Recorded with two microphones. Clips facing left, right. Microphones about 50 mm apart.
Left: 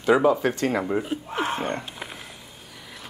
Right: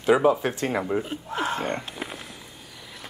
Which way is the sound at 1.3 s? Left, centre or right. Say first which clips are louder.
Even; left.